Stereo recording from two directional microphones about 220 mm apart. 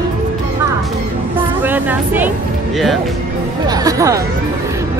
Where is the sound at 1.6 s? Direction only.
10° right (ahead or behind).